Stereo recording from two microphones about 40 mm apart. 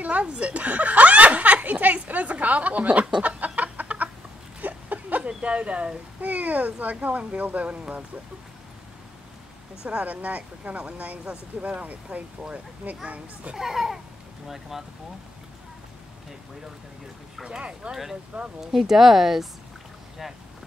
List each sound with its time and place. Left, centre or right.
0.0 s speech: right
0.5 s chuckle: right
2.0 s a sound: right
3.2 s chicken: right
4.6 s a sound: right
5.4 s speech: right
9.8 s speech: right
13.6 s a child's voice: centre
17.5 s speech: right
18.6 s speech: centre